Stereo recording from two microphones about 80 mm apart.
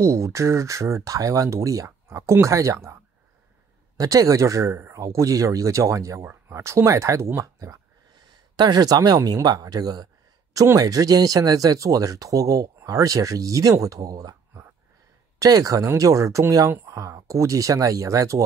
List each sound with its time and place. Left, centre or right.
0.0 s speech: right
8.5 s speech: right
10.5 s speech: right